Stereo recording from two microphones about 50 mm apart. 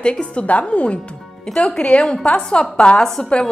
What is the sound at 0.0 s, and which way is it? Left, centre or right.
Speech, left.